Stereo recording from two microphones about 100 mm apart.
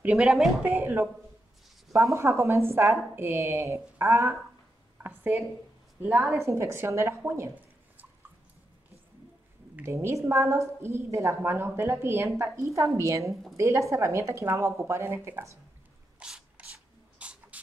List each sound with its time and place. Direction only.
0.2 s speech: centre (ahead or behind)
0.7 s a woman's voice: 20° right (ahead or behind)
1.9 s a woman's voice: 30° right (ahead or behind)
5.0 s a woman's voice: 15° right (ahead or behind)
9.8 s a woman's voice: 30° right (ahead or behind)
16.2 s rub: 10° right (ahead or behind)
17.2 s a sound: 10° right (ahead or behind)